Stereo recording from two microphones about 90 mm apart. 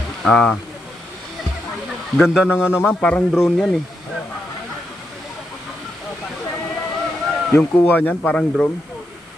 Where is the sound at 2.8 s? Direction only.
10° left (ahead or behind).